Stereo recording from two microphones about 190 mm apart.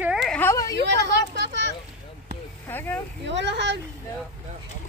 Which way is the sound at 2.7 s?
10° left (ahead or behind).